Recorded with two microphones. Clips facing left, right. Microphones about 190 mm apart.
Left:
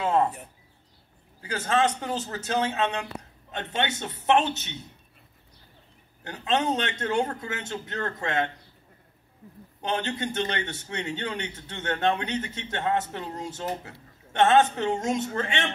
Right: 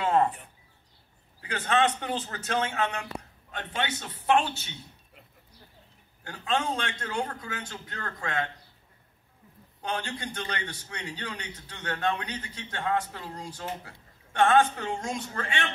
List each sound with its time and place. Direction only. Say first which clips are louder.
1.5 s a man's voice: left 1 dB; 40° left (ahead or behind)
2.2 s a man's voice: left 3 dB; 30° left (ahead or behind)
6.2 s a man's voice: left 4 dB; 20° left (ahead or behind)
9.8 s a man's voice: left 5 dB; 25° left (ahead or behind)